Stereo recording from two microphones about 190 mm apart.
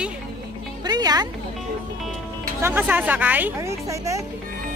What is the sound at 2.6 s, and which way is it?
Speech, 10° right (ahead or behind).